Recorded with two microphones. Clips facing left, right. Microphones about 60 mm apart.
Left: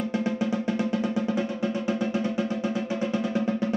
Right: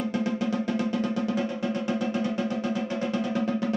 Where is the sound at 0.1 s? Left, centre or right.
Centre.